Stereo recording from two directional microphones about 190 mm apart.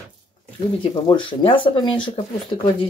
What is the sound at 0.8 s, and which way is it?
Speech, 25° left (ahead or behind).